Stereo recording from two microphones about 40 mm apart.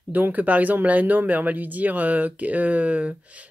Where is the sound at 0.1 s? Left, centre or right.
Right.